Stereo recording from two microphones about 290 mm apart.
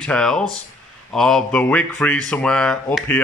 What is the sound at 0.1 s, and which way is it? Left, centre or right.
A man's voice, centre.